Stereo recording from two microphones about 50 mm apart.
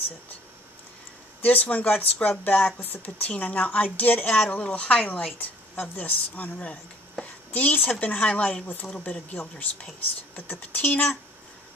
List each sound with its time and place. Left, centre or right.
1.4 s speech: left